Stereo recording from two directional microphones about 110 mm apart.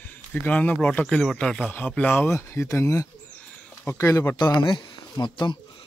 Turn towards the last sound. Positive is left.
turn(degrees=40)  # may be behind; listen again after turning